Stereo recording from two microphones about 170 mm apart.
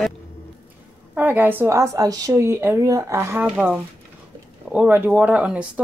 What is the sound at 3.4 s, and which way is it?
A woman's voice, 5° right (ahead or behind).